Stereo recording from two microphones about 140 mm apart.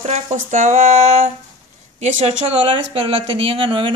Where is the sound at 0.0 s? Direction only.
55° right (ahead or behind).